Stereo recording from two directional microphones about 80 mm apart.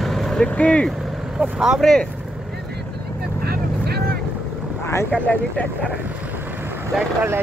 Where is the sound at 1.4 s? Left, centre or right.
Centre.